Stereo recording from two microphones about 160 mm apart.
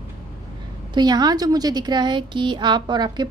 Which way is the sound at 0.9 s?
25° right (ahead or behind).